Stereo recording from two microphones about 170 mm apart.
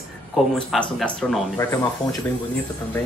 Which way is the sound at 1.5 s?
15° left (ahead or behind).